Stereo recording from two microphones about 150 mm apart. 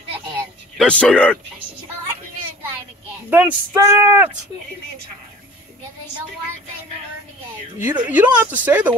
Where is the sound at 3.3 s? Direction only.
15° right (ahead or behind).